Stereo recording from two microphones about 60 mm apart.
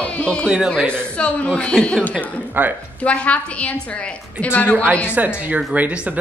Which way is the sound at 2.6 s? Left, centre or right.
Right.